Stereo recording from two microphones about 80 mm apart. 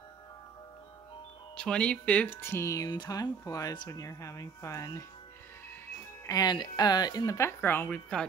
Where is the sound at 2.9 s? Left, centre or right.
Left.